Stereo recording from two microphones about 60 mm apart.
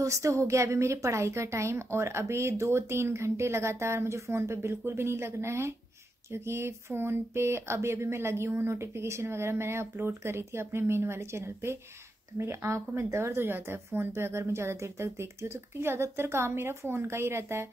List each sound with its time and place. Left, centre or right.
0.0 s a woman's voice: right